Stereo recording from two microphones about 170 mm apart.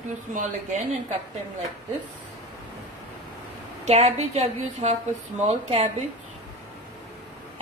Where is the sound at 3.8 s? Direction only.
40° right (ahead or behind).